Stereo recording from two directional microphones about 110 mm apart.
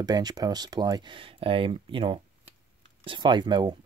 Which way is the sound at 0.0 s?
40° right (ahead or behind).